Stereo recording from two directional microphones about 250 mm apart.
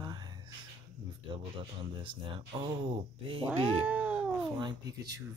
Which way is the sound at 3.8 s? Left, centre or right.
Centre.